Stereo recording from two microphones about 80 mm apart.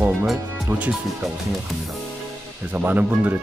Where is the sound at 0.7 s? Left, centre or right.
Right.